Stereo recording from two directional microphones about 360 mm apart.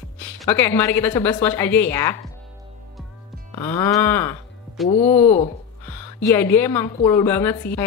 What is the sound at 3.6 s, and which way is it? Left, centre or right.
Speech, centre.